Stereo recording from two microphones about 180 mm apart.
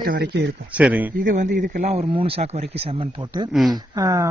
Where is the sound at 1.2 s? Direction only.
50° right (ahead or behind).